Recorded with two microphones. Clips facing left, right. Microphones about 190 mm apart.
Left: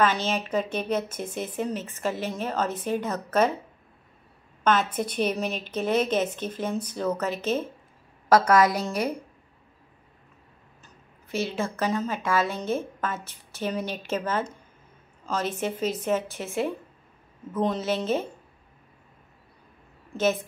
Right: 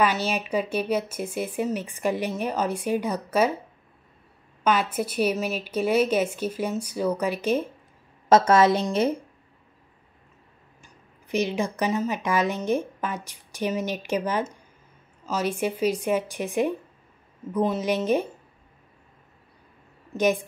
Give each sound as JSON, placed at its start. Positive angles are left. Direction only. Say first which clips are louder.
{"t": 0.0, "sound": "speech", "louder": "even", "side_deg": -10}
{"t": 4.6, "sound": "speech", "louder": "even", "side_deg": -10}
{"t": 8.3, "sound": "a woman's voice", "louder": "right 2 dB", "side_deg": -25}
{"t": 10.8, "sound": "speech", "louder": "right 1 dB", "side_deg": -15}
{"t": 20.1, "sound": "a woman's voice", "louder": "right 2 dB", "side_deg": -15}